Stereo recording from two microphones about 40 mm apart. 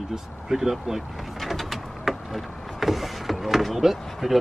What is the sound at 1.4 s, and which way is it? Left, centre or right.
Power windows, centre.